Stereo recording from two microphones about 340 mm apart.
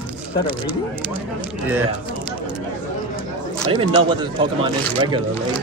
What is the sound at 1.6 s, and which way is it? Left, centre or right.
Speech, centre.